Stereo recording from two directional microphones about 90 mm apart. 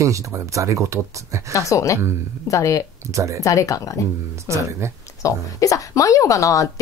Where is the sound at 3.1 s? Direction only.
35° right (ahead or behind).